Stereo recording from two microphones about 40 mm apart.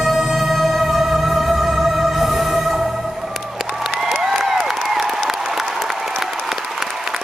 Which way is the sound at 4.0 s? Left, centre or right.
Centre.